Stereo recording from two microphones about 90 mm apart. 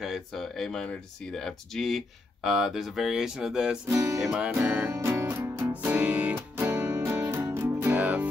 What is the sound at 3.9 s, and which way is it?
Music, 35° right (ahead or behind).